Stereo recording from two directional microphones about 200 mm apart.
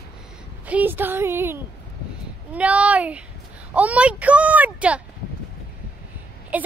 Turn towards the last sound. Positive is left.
turn(degrees=-5)  # may be behind; listen again after turning